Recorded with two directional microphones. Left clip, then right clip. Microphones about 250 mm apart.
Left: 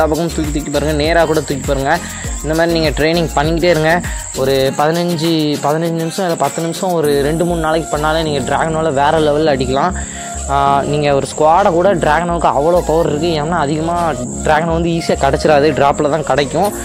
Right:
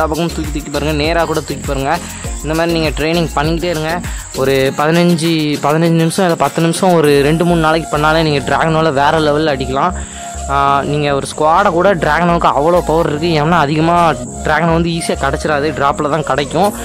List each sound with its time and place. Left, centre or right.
0.4 s speech: centre
4.4 s speech: centre